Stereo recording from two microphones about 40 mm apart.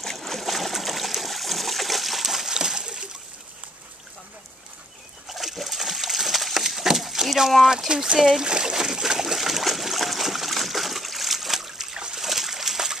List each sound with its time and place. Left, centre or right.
0.0 s trickle: centre
5.3 s splash: centre
7.9 s speech: right
8.2 s speech: centre
8.5 s boat: right
8.8 s a sound: centre
12.3 s slosh: centre